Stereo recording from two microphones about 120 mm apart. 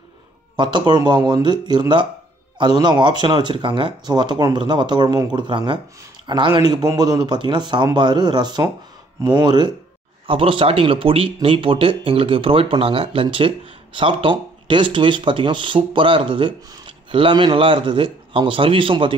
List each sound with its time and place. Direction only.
0.6 s speech: 40° right (ahead or behind)
10.2 s speech: 50° right (ahead or behind)